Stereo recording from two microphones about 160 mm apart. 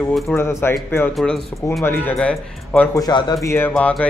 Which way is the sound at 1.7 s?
15° left (ahead or behind).